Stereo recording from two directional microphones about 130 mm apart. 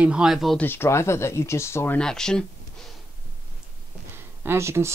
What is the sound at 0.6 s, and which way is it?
Speech, 15° left (ahead or behind).